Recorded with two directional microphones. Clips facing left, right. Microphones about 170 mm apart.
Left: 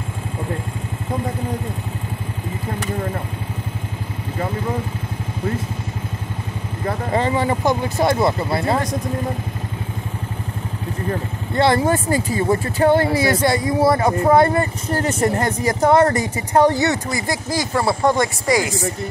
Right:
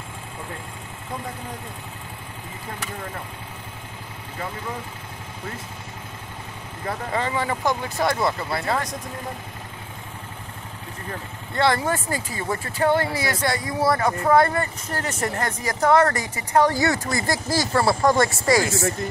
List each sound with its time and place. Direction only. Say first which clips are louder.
7.1 s speech: left 6 dB; 30° left (ahead or behind)
11.5 s speech: left 5 dB; 25° left (ahead or behind)